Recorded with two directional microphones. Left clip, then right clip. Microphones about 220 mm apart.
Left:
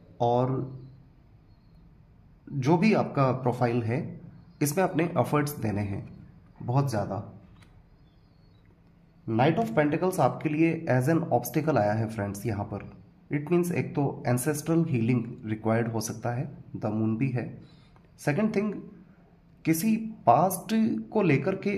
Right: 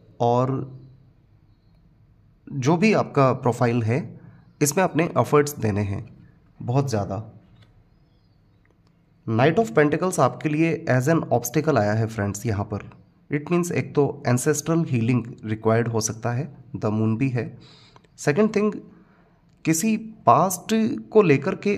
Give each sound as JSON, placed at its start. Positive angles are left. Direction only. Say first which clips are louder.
{"t": 0.2, "sound": "speech", "louder": "right 4 dB", "side_deg": -35}
{"t": 2.6, "sound": "speech", "louder": "right 4 dB", "side_deg": -35}
{"t": 9.2, "sound": "speech", "louder": "right 5 dB", "side_deg": -40}